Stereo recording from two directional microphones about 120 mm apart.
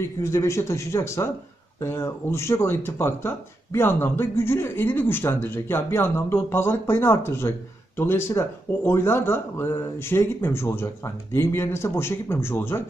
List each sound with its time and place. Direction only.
0.2 s speech: 25° left (ahead or behind)